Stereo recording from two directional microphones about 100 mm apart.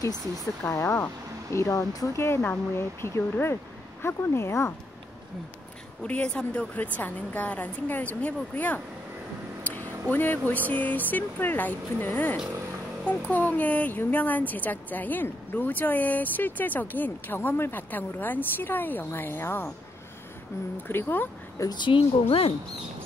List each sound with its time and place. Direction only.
0.7 s speech: 30° left (ahead or behind)
6.0 s speech: 10° left (ahead or behind)
9.6 s a sound: 15° left (ahead or behind)
10.7 s speech: 15° left (ahead or behind)
20.9 s speech: 20° left (ahead or behind)
21.5 s speech: 45° left (ahead or behind)